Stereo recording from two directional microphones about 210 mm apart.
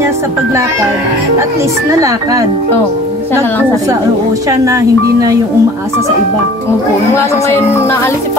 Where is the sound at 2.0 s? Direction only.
15° right (ahead or behind).